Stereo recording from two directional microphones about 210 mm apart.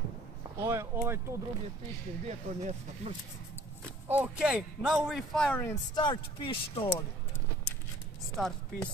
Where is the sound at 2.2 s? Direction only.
30° right (ahead or behind).